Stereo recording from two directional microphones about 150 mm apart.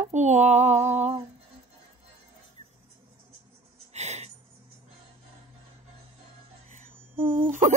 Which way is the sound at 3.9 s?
45° right (ahead or behind).